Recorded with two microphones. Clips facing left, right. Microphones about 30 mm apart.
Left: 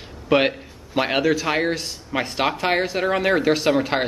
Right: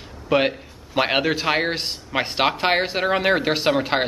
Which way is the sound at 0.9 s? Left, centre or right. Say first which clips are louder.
Even; centre.